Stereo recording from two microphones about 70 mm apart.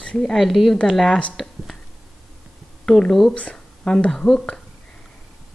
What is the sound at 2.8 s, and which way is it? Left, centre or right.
A woman's voice, centre.